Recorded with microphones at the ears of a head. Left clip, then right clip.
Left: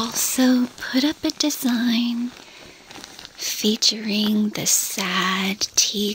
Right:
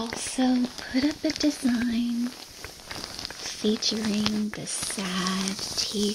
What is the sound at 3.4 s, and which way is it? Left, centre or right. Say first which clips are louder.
Speech: left 7 dB; left.